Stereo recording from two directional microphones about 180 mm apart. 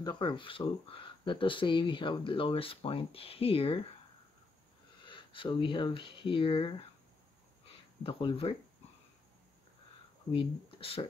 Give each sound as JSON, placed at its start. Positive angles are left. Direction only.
{"t": 0.0, "sound": "speech", "side_deg": 25}
{"t": 5.0, "sound": "speech", "side_deg": 30}
{"t": 8.0, "sound": "speech", "side_deg": 30}
{"t": 10.3, "sound": "speech", "side_deg": 30}